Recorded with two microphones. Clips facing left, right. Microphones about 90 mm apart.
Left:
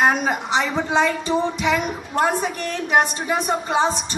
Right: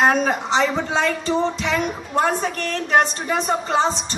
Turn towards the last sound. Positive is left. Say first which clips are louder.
# even
turn(degrees=15)  # may be behind; listen again after turning